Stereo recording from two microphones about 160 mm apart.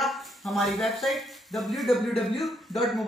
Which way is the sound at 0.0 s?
Centre (ahead or behind).